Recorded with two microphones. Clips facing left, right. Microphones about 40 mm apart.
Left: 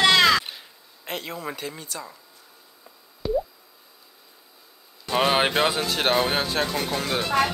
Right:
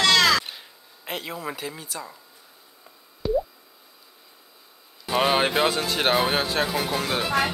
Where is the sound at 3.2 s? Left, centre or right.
Centre.